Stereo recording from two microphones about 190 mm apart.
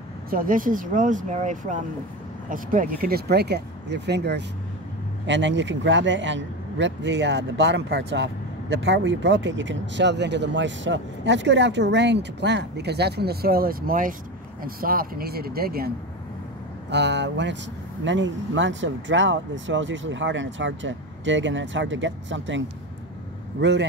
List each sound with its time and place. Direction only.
0.3 s speech: 45° right (ahead or behind)
16.9 s speech: 65° right (ahead or behind)
23.6 s speech: 65° right (ahead or behind)